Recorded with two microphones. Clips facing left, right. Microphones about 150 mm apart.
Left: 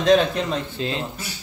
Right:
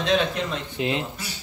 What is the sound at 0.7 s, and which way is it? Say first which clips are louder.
Speech: right 1 dB; 20° right (ahead or behind).